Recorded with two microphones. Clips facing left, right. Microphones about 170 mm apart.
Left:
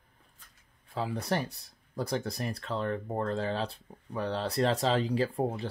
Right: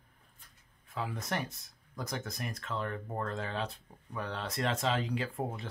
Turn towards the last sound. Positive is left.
turn(degrees=35)  # may be behind; listen again after turning